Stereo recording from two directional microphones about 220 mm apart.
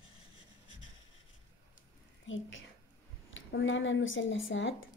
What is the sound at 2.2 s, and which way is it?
A woman's voice, 60° left (ahead or behind).